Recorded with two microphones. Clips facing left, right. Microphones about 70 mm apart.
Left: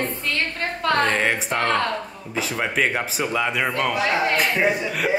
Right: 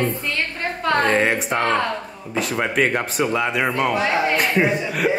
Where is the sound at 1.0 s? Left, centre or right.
Centre.